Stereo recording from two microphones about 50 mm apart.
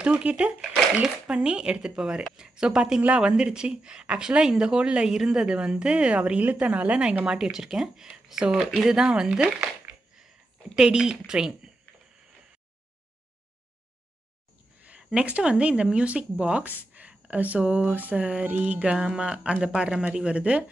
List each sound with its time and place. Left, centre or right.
0.0 s speech: right
7.2 s speech: centre
10.8 s speech: centre
14.8 s a sound: right
15.2 s speech: right